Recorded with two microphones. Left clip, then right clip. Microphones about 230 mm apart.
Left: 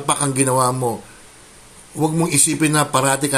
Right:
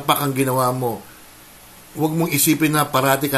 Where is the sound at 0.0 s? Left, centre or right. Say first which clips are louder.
Right 1 dB; centre.